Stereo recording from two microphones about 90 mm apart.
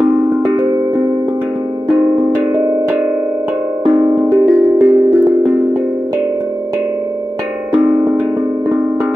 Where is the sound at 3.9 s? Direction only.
25° right (ahead or behind).